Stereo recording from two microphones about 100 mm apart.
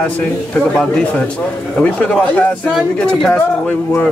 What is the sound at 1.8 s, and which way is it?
Speech, 10° left (ahead or behind).